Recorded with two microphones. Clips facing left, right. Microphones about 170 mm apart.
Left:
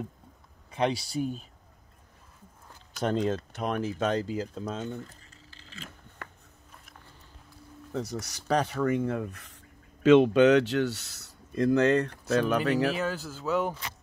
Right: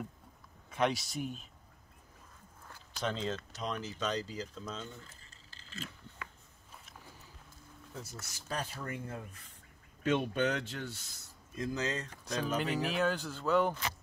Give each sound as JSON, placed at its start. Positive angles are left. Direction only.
{"t": 0.7, "sound": "speech", "side_deg": 30}
{"t": 3.0, "sound": "speech", "side_deg": 50}
{"t": 5.5, "sound": "a sound", "side_deg": -40}
{"t": 7.9, "sound": "speech", "side_deg": 70}
{"t": 10.0, "sound": "speech", "side_deg": 90}
{"t": 12.9, "sound": "speech", "side_deg": 5}